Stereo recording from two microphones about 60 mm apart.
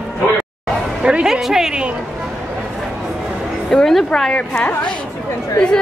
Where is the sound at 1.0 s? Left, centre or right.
Centre.